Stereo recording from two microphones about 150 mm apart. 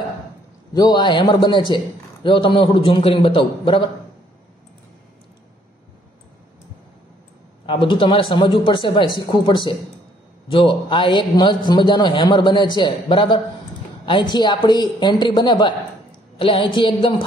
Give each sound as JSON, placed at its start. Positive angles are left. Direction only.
{"t": 0.7, "sound": "a man's voice", "side_deg": 30}
{"t": 7.6, "sound": "a man's voice", "side_deg": 35}